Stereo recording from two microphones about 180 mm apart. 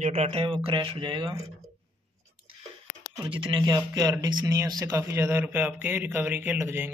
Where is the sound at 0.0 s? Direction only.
35° right (ahead or behind).